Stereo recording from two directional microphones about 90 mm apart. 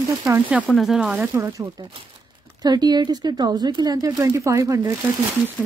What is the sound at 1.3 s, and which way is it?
Speech, 35° right (ahead or behind).